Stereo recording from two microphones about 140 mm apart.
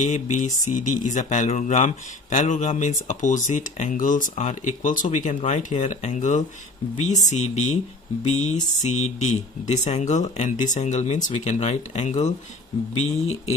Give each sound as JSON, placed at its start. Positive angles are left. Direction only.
{"t": 0.0, "sound": "speech", "side_deg": 60}